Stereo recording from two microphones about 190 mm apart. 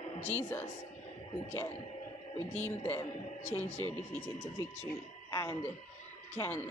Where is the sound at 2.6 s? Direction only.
10° left (ahead or behind).